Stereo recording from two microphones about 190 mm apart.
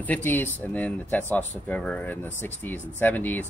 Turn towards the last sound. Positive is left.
turn(degrees=10)  # may be behind; listen again after turning